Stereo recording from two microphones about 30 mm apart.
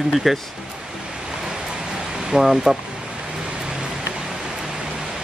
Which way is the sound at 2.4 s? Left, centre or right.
Centre.